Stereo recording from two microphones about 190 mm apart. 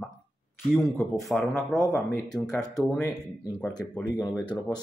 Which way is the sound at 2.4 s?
5° left (ahead or behind).